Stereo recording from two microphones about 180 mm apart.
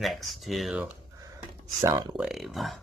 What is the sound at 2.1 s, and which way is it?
Speech, centre (ahead or behind).